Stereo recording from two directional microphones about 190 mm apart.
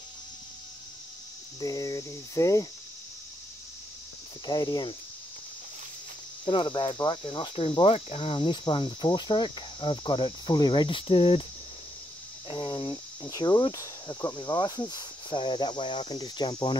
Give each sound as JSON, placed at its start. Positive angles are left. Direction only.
{"t": 1.6, "sound": "cricket", "side_deg": 20}
{"t": 4.5, "sound": "cricket", "side_deg": 20}
{"t": 6.4, "sound": "cricket", "side_deg": 25}
{"t": 12.4, "sound": "cricket", "side_deg": 25}